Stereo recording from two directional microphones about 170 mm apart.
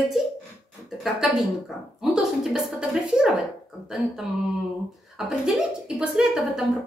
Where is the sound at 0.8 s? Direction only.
Centre (ahead or behind).